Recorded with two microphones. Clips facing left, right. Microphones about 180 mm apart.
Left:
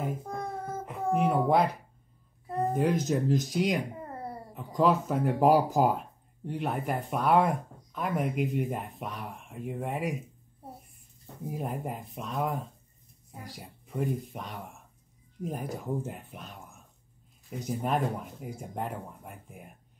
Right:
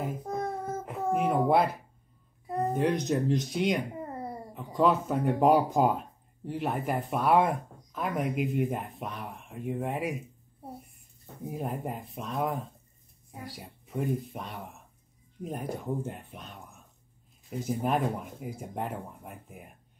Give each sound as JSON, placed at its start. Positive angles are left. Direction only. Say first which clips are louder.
{"t": 0.3, "sound": "child singing", "louder": "right 3 dB", "side_deg": -20}
{"t": 1.1, "sound": "speech", "louder": "even", "side_deg": 0}
{"t": 11.4, "sound": "speech", "louder": "even", "side_deg": 0}